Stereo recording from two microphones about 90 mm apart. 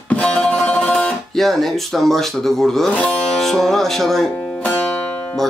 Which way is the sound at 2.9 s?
15° left (ahead or behind).